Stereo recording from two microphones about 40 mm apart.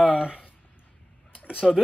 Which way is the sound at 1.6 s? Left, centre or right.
Centre.